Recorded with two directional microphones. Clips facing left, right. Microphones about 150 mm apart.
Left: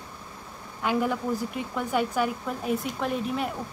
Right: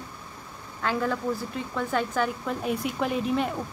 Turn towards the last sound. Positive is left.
turn(degrees=0)  # may be behind; listen again after turning